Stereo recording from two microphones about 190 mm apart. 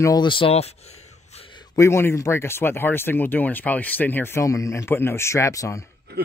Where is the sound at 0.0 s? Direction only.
20° left (ahead or behind).